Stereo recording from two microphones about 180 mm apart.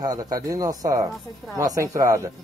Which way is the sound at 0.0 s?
20° right (ahead or behind).